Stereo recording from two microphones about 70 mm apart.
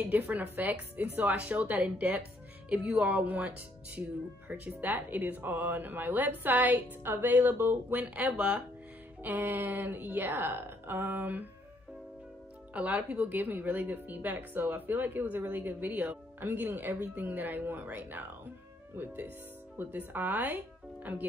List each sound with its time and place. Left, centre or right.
0.0 s speech: right
12.7 s speech: right